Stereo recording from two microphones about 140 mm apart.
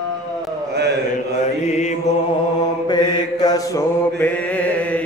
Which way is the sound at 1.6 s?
55° left (ahead or behind).